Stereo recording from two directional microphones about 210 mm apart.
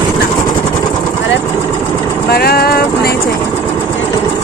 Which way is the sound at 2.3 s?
50° left (ahead or behind).